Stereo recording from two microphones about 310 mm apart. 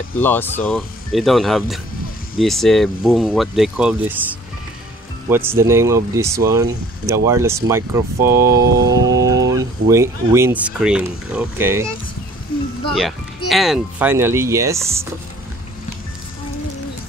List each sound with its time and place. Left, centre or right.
0.2 s speech: centre
5.3 s speech: centre
8.5 s a sound: right
9.5 s speech: centre
13.5 s speech: centre